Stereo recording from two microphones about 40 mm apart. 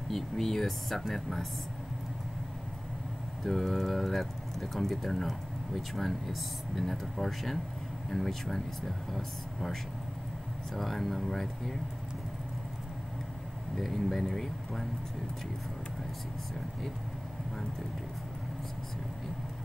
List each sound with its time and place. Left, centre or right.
0.1 s speech: centre
3.4 s speech: centre
13.7 s speech: centre